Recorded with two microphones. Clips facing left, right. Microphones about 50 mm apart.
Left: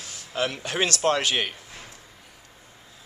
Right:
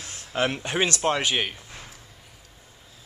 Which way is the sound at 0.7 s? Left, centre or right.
Centre.